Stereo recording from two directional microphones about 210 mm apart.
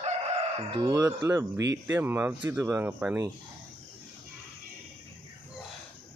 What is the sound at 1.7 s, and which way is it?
Speech, 10° right (ahead or behind).